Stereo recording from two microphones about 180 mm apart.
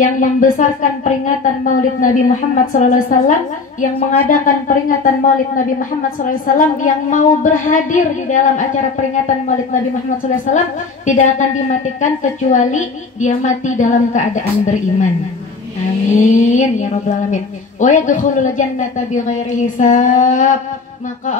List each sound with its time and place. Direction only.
0.2 s a woman's voice: 45° left (ahead or behind)
11.1 s a woman's voice: 45° left (ahead or behind)
16.3 s a woman's voice: 40° left (ahead or behind)